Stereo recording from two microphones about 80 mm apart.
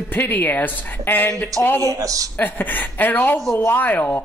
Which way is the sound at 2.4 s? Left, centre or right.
Left.